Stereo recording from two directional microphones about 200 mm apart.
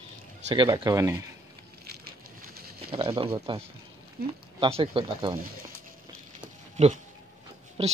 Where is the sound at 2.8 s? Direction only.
25° right (ahead or behind).